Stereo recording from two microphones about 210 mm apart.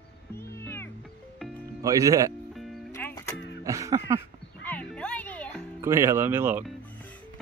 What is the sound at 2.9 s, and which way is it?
Music, 10° left (ahead or behind).